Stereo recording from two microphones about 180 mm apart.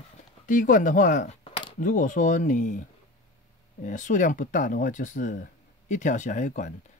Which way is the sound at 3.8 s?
45° left (ahead or behind).